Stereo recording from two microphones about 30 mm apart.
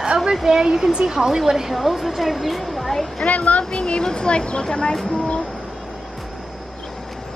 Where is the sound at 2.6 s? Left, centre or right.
Centre.